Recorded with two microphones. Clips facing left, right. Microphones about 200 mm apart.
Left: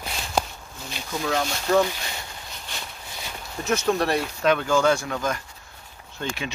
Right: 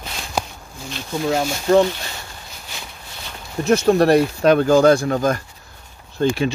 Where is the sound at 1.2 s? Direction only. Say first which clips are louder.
Right 6 dB; 30° right (ahead or behind).